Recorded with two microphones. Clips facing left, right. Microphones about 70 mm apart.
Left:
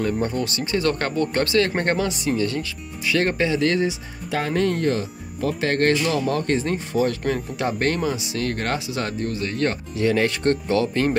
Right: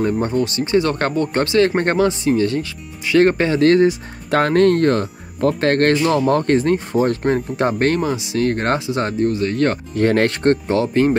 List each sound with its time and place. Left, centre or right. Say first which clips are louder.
0.2 s speech: right 5 dB; right
4.3 s speech: right 8 dB; right